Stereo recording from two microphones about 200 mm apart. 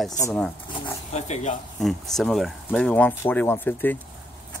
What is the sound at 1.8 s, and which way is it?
Speech, centre (ahead or behind).